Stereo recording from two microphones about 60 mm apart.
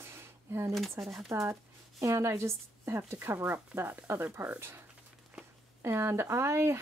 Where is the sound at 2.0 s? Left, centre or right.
Right.